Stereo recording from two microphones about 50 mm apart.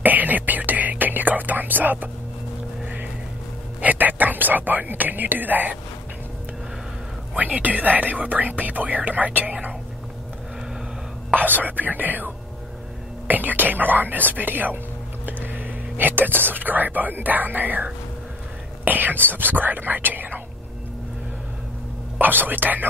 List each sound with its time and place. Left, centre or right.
0.0 s whispering: right
3.8 s speech: right
7.3 s speech: right
11.3 s speech: right
13.3 s speech: right
18.9 s speech: right
22.2 s speech: right